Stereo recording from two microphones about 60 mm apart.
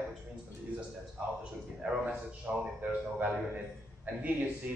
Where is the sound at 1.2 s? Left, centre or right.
Right.